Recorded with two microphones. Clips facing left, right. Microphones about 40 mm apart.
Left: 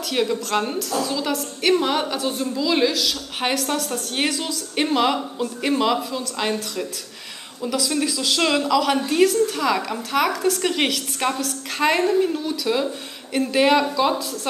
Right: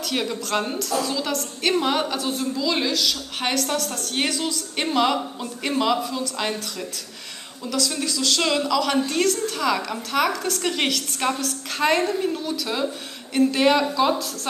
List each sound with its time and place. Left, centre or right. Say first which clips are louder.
0.0 s a woman's voice: left 4 dB; centre